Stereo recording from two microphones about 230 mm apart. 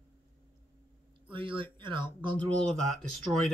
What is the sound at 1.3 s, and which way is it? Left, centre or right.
Speech, right.